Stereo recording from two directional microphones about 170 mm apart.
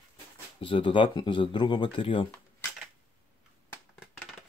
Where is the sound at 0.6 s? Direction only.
30° left (ahead or behind).